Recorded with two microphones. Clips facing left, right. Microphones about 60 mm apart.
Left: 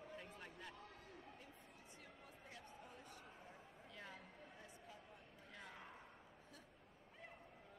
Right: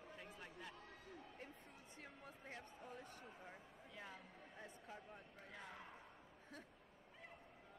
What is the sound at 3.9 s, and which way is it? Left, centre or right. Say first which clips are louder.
Speech: right 1 dB; centre.